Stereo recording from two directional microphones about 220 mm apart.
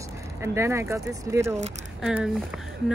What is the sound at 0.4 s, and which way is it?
Speech, 10° right (ahead or behind).